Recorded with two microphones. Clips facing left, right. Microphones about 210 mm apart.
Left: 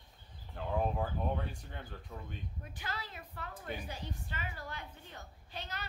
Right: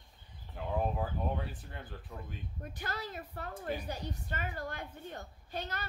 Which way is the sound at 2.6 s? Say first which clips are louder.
Right 6 dB; 45° right (ahead or behind).